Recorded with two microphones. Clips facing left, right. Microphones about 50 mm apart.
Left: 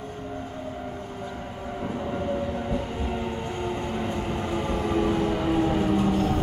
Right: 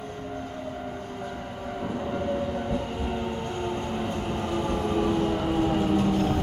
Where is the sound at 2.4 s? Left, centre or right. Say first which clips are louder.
Even; left.